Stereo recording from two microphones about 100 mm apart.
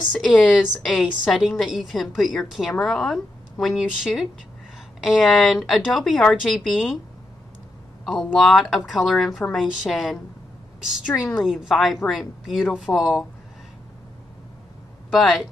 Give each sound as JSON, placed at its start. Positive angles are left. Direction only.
{"t": 0.2, "sound": "a woman's voice", "side_deg": 0}
{"t": 8.0, "sound": "a woman's voice", "side_deg": 0}
{"t": 11.1, "sound": "a woman's voice", "side_deg": 20}
{"t": 11.4, "sound": "a woman's voice", "side_deg": -5}
{"t": 15.1, "sound": "a woman's voice", "side_deg": 0}